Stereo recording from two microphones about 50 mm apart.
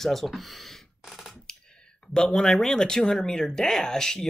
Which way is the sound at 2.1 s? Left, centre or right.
Centre.